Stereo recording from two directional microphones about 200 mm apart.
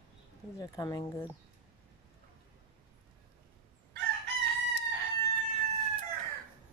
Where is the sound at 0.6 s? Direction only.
20° left (ahead or behind).